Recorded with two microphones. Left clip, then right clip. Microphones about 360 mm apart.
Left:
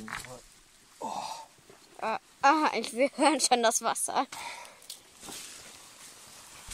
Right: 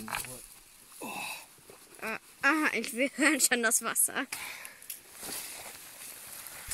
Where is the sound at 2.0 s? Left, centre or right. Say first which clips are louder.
Left 5 dB; centre.